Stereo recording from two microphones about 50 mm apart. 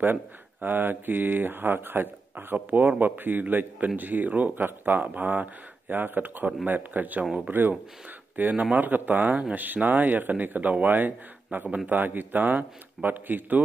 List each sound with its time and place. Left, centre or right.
0.0 s speech: right